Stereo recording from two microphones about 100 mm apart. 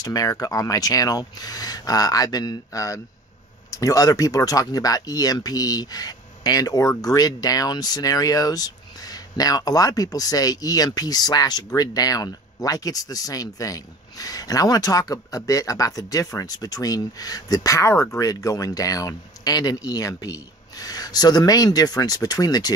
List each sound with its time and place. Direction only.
0.0 s speech: 40° left (ahead or behind)